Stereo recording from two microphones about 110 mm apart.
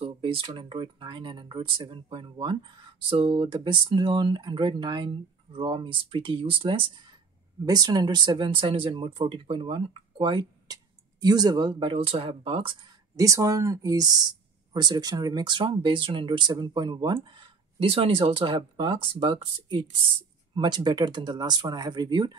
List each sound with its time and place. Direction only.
0.0 s a sound: 55° right (ahead or behind)
0.6 s speech: 50° right (ahead or behind)
7.6 s speech: 35° right (ahead or behind)
11.1 s speech: 35° right (ahead or behind); by 12.7 s 55° right (ahead or behind)
13.1 s speech: 30° right (ahead or behind); by 19.9 s 55° right (ahead or behind)
20.5 s speech: 40° right (ahead or behind)